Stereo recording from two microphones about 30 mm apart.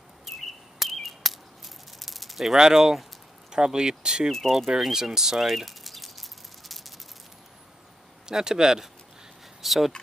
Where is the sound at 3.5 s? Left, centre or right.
Right.